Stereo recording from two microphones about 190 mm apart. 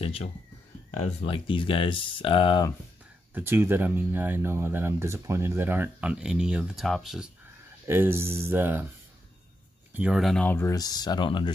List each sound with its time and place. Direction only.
0.0 s a sound: 30° left (ahead or behind)
1.0 s speech: 30° left (ahead or behind)
3.3 s speech: 10° right (ahead or behind)
7.8 s speech: 10° right (ahead or behind)
9.9 s speech: 5° right (ahead or behind); by 11.5 s 25° left (ahead or behind)